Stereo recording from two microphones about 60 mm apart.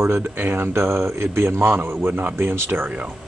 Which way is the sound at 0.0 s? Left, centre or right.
Right.